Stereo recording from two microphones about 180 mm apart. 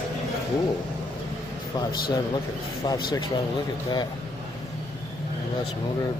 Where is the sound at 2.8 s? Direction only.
25° left (ahead or behind).